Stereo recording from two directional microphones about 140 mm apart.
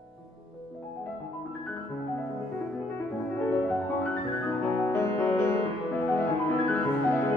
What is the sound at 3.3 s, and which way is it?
Music, 15° left (ahead or behind).